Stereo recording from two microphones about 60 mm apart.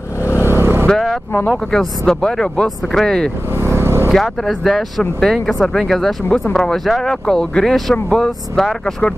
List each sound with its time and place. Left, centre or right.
0.4 s vehicle: right
0.8 s speech: centre
3.0 s speech: centre
3.5 s vehicle: right
4.1 s speech: centre
8.3 s speech: centre